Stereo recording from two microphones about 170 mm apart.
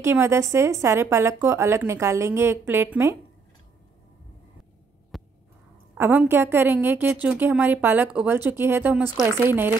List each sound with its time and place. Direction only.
0.0 s a woman's voice: 15° right (ahead or behind)
5.1 s a sound: centre (ahead or behind)
5.9 s a woman's voice: 15° right (ahead or behind)